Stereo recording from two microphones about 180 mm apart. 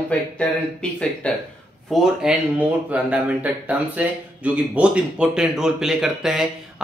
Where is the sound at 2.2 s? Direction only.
5° right (ahead or behind).